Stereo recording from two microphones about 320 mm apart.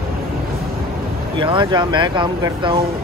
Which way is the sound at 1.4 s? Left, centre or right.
Centre.